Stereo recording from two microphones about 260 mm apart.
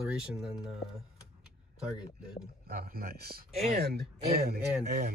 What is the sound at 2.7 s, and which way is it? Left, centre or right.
Speech, right.